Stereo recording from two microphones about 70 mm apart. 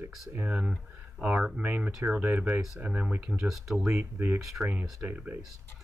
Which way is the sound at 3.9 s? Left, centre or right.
Right.